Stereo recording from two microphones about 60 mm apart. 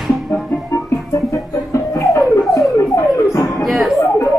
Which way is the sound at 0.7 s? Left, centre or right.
Left.